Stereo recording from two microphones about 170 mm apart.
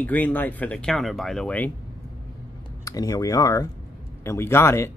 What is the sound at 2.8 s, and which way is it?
Speech, 20° left (ahead or behind).